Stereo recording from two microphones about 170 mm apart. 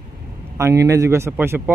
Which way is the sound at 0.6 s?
15° right (ahead or behind).